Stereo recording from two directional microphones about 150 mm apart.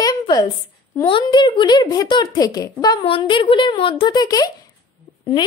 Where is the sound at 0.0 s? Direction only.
25° left (ahead or behind).